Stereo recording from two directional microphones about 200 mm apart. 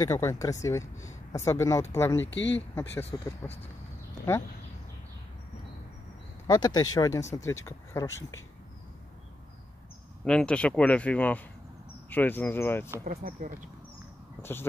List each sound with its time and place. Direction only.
0.0 s speech: 15° left (ahead or behind)
2.2 s speech: 60° left (ahead or behind)
2.7 s speech: 10° left (ahead or behind)
6.4 s speech: 20° left (ahead or behind)
8.1 s speech: 75° left (ahead or behind)
10.2 s speech: 5° left (ahead or behind)
13.0 s speech: 45° right (ahead or behind)
14.4 s speech: 10° left (ahead or behind)